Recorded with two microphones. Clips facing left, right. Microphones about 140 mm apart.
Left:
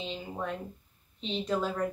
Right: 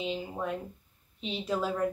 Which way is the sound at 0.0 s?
5° right (ahead or behind).